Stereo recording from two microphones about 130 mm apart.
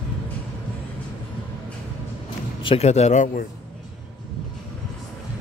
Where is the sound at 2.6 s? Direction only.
50° left (ahead or behind); by 3.4 s 70° left (ahead or behind).